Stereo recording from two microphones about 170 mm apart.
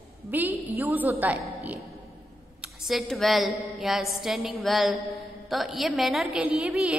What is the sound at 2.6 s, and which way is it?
A woman's voice, centre (ahead or behind).